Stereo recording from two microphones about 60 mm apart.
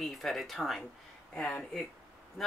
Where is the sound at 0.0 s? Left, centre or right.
Centre.